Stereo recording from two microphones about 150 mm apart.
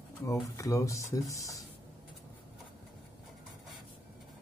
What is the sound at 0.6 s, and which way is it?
Speech, 20° left (ahead or behind).